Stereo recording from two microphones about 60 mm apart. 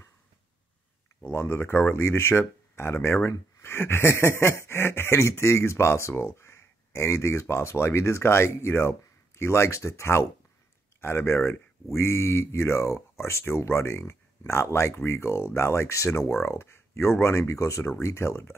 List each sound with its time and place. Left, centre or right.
1.2 s speech: left